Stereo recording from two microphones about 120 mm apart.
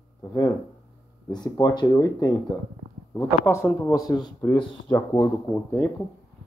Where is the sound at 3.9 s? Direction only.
35° left (ahead or behind).